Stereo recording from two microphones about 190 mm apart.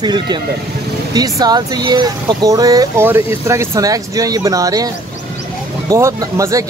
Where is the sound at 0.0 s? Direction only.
20° right (ahead or behind).